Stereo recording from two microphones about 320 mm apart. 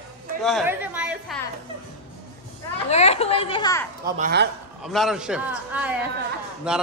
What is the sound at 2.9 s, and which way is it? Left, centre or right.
Speech, centre.